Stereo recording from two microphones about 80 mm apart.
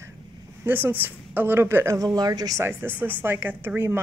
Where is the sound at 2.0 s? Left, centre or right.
Right.